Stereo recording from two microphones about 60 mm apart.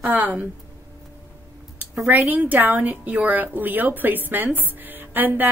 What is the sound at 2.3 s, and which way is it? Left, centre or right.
A woman's voice, right.